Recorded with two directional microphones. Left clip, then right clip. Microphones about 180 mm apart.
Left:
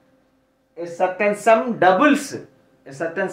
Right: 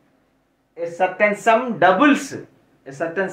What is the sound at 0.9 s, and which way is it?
Speech, 15° left (ahead or behind).